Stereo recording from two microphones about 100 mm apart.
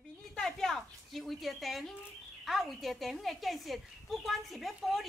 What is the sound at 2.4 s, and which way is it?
Speech, centre (ahead or behind).